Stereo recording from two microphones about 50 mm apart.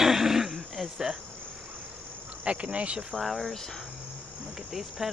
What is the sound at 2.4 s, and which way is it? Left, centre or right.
Cricket, right.